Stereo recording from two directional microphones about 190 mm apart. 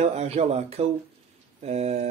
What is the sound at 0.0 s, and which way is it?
A man's voice, 35° right (ahead or behind).